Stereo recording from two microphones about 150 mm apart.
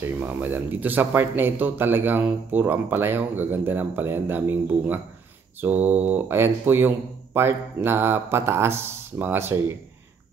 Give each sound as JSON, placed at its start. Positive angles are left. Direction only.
{"t": 0.0, "sound": "speech", "side_deg": -10}